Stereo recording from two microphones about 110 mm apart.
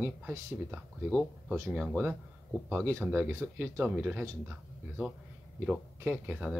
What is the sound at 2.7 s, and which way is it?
Speech, 20° right (ahead or behind).